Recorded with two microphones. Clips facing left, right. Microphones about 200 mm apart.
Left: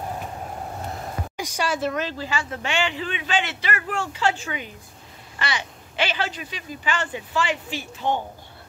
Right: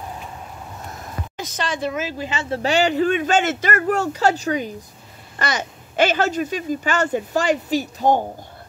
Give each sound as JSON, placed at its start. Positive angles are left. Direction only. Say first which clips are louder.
{"t": 1.3, "sound": "a sound", "louder": "even", "side_deg": 10}
{"t": 2.1, "sound": "speech", "louder": "right 4 dB", "side_deg": -20}
{"t": 2.6, "sound": "speech", "louder": "right 12 dB", "side_deg": -40}